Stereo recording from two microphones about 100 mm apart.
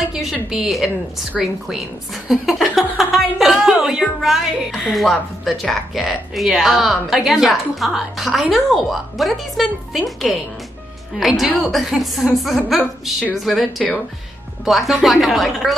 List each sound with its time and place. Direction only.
0.1 s a woman's voice: 5° right (ahead or behind)
1.4 s a sound: 5° right (ahead or behind)
3.7 s a woman's voice: 5° right (ahead or behind)